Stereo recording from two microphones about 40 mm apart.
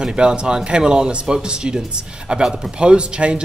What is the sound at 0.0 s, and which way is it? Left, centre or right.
Speech, centre.